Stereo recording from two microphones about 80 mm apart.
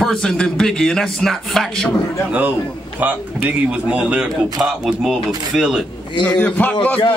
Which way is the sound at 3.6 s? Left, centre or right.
Centre.